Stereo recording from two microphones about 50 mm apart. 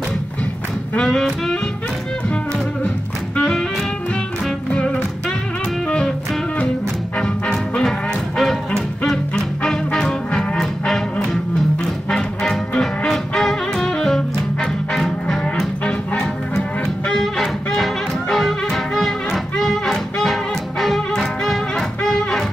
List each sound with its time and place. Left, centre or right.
1.0 s music: centre
4.6 s music: centre
7.2 s music: centre
8.4 s music: centre
15.4 s music: centre